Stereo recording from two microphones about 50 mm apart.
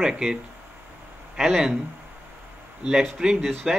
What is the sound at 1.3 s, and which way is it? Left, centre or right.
Speech, centre.